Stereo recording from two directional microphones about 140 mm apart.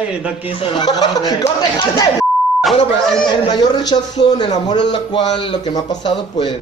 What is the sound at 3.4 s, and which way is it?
A man's voice, 30° left (ahead or behind).